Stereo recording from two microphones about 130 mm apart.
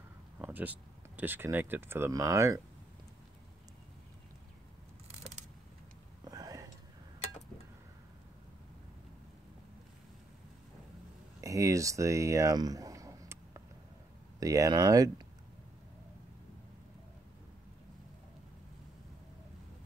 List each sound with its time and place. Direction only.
0.4 s speech: 15° right (ahead or behind)
6.2 s whispering: 30° right (ahead or behind)
11.4 s a sound: 25° right (ahead or behind)
14.4 s speech: 25° right (ahead or behind)